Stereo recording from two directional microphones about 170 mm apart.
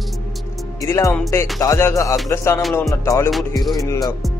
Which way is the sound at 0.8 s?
15° left (ahead or behind).